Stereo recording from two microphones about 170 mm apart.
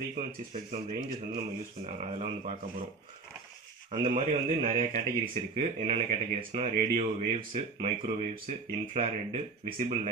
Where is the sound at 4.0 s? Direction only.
50° right (ahead or behind).